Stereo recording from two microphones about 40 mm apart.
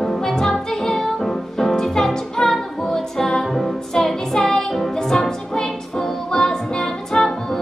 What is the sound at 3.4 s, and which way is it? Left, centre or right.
Music, centre.